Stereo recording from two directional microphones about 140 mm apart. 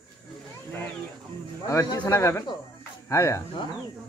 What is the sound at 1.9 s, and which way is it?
Speech, 25° left (ahead or behind).